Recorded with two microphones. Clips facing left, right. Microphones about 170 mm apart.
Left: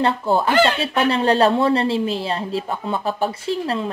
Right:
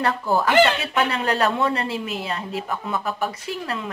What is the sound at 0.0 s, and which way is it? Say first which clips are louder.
Speech: left 3 dB; 25° left (ahead or behind).